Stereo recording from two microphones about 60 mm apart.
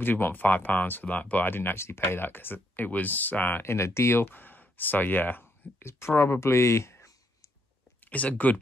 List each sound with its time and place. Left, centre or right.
0.0 s speech: left
1.4 s speech: left
3.6 s speech: left
8.1 s speech: left